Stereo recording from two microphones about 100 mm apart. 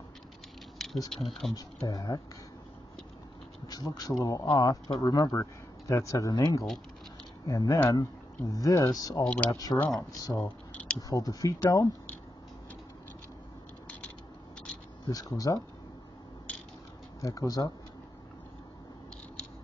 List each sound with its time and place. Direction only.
0.7 s a sound: 5° left (ahead or behind)
1.1 s speech: 5° left (ahead or behind)
1.5 s speech: 40° left (ahead or behind)
3.6 s speech: 40° left (ahead or behind)
9.2 s speech: 10° left (ahead or behind)
9.5 s speech: 40° left (ahead or behind)
10.7 s a sound: 15° left (ahead or behind)
11.0 s speech: 35° left (ahead or behind)
15.0 s speech: 35° left (ahead or behind)
17.2 s speech: 35° left (ahead or behind)